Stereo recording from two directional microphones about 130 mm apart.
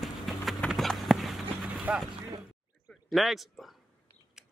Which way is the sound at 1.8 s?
5° right (ahead or behind).